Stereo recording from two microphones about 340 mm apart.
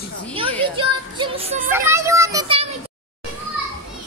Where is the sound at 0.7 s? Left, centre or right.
Centre.